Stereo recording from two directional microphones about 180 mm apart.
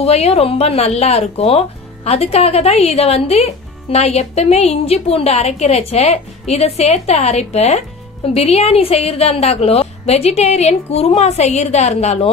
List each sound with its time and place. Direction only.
0.0 s speech: 35° left (ahead or behind)